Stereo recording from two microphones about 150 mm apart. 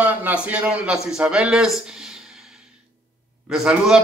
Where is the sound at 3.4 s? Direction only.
Centre (ahead or behind).